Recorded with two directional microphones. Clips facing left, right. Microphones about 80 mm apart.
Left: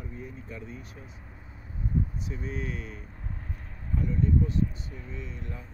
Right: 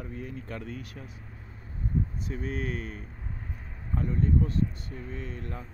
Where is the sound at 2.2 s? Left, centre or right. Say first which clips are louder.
Right 2 dB; right.